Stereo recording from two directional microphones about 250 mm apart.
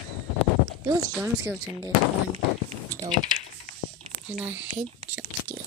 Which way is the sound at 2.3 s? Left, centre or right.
Right.